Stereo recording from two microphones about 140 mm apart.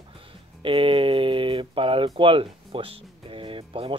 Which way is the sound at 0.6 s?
40° right (ahead or behind).